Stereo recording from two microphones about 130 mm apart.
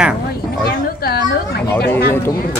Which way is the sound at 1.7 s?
20° left (ahead or behind).